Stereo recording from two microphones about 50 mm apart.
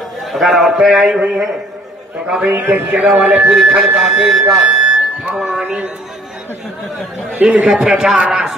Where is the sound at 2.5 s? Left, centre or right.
Right.